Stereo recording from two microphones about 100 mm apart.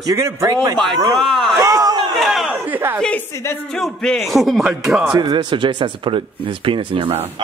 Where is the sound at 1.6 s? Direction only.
40° right (ahead or behind).